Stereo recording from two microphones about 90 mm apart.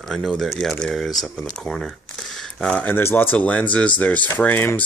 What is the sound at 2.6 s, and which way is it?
Speech, 10° left (ahead or behind).